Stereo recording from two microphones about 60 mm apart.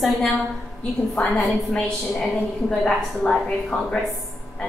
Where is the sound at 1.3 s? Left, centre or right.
Centre.